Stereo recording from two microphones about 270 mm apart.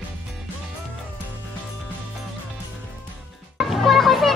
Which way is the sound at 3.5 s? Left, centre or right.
Centre.